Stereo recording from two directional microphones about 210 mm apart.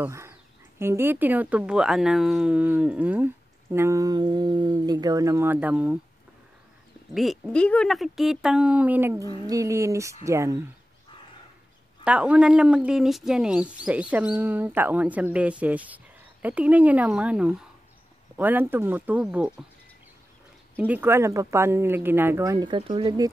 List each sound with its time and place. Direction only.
0.0 s speech: 15° right (ahead or behind)
7.2 s speech: centre (ahead or behind)
12.0 s speech: 5° right (ahead or behind)
20.7 s speech: 10° right (ahead or behind)